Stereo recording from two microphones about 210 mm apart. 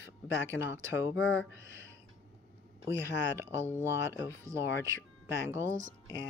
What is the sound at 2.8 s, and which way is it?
Speech, 10° right (ahead or behind).